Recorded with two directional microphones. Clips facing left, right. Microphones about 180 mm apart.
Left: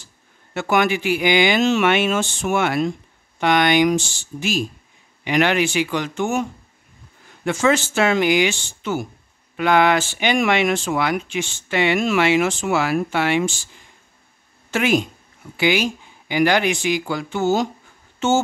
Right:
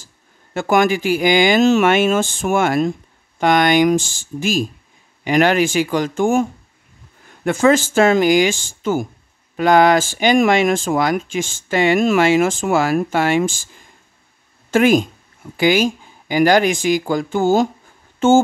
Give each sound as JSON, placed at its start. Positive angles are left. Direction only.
{"t": 0.6, "sound": "speech", "side_deg": -45}
{"t": 7.4, "sound": "speech", "side_deg": -45}
{"t": 14.7, "sound": "speech", "side_deg": -45}
{"t": 18.2, "sound": "a sound", "side_deg": -50}